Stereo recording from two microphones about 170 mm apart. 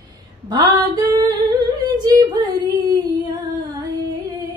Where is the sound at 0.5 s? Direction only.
20° right (ahead or behind).